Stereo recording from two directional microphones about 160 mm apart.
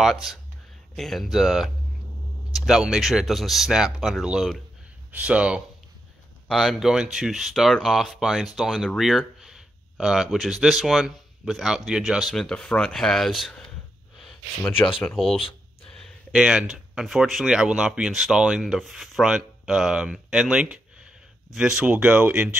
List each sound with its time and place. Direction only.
0.0 s speech: centre (ahead or behind)
14.6 s speech: 10° left (ahead or behind)
15.0 s speech: centre (ahead or behind)